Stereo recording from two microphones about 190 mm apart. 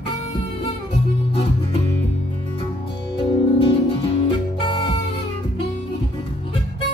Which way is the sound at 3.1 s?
30° left (ahead or behind).